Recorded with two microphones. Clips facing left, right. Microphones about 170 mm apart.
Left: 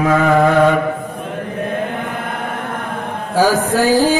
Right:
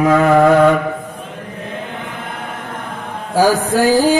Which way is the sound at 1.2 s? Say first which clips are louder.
Left 6 dB; 55° left (ahead or behind).